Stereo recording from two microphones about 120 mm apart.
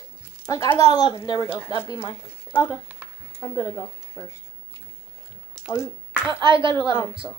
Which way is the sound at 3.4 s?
30° left (ahead or behind).